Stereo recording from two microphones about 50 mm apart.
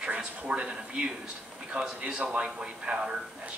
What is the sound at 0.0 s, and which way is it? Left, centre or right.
Speech, right.